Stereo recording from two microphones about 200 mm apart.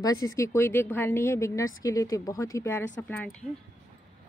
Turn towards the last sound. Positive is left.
turn(degrees=10)  # may be behind; listen again after turning